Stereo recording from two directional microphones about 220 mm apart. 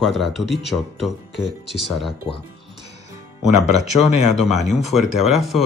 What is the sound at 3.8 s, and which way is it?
Speech, 30° left (ahead or behind).